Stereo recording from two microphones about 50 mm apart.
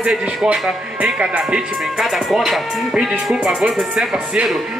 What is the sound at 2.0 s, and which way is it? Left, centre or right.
Speech, centre.